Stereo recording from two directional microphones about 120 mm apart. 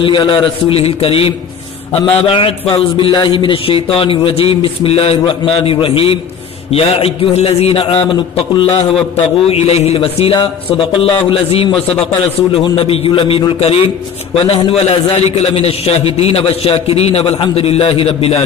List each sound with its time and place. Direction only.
0.0 s a man's voice: 45° left (ahead or behind)
8.6 s a man's voice: 65° left (ahead or behind)
12.7 s a man's voice: 55° left (ahead or behind)